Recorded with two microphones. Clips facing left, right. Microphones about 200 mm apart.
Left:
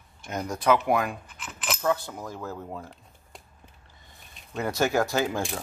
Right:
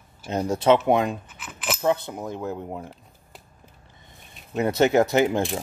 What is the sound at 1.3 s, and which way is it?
Keys jangling, 5° right (ahead or behind).